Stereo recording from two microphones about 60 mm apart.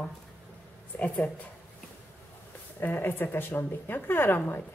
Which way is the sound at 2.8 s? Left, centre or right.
Left.